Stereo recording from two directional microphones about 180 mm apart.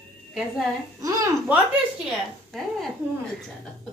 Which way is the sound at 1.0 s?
20° right (ahead or behind).